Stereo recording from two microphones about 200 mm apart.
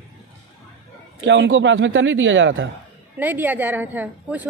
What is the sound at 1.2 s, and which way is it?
A man's voice, 70° right (ahead or behind).